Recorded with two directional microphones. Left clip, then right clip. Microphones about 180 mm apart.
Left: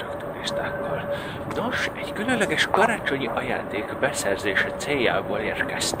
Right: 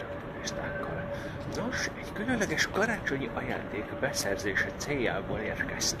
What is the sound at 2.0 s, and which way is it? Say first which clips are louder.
Speech: left 8 dB; 25° right (ahead or behind).